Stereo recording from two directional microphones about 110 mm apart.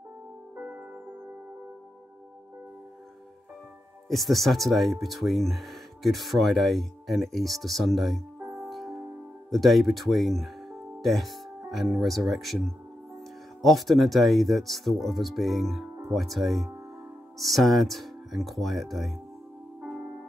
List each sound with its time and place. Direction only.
0.6 s music: 20° right (ahead or behind)
4.1 s speech: centre (ahead or behind)
8.4 s music: 25° right (ahead or behind)
8.6 s music: centre (ahead or behind)
9.5 s speech: centre (ahead or behind)